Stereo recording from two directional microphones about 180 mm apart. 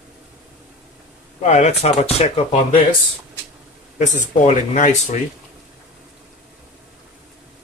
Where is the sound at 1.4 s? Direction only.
40° left (ahead or behind).